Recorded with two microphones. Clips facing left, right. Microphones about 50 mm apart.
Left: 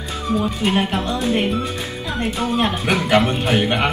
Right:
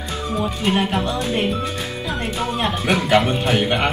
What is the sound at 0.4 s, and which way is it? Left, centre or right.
Speech, centre.